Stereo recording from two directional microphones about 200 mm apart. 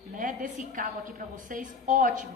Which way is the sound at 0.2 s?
40° right (ahead or behind).